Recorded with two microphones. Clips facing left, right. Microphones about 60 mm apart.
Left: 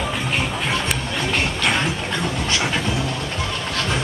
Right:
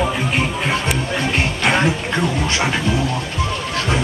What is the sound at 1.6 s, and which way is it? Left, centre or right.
Music, right.